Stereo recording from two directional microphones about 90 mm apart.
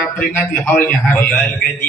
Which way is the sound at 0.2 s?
10° left (ahead or behind).